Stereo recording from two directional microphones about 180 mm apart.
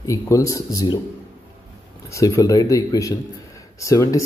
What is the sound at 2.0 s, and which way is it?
Speech, 15° left (ahead or behind).